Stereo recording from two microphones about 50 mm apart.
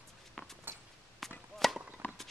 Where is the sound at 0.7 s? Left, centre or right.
Right.